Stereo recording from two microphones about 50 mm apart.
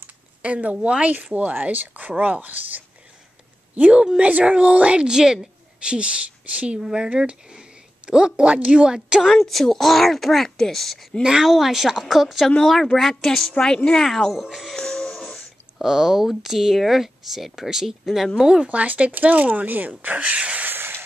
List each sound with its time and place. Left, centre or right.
0.4 s a woman's voice: right
6.8 s speech: centre
9.3 s speech: centre
11.2 s speech: centre
12.4 s a woman's voice: centre
14.0 s speech: centre
14.7 s music: centre
15.8 s speech: centre
18.6 s a woman's voice: right
20.6 s a sound: right